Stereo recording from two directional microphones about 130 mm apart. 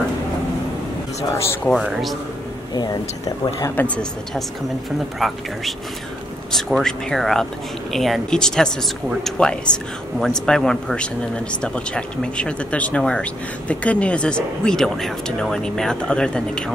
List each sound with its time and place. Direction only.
1.3 s speech: 20° left (ahead or behind)
1.7 s speech: centre (ahead or behind)
2.7 s speech: 30° left (ahead or behind)
3.7 s speech: 10° left (ahead or behind)